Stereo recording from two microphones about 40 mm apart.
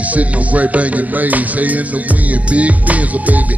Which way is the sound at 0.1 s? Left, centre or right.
Right.